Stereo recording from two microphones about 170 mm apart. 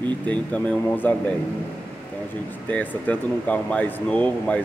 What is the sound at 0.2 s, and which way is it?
Speech, 10° left (ahead or behind).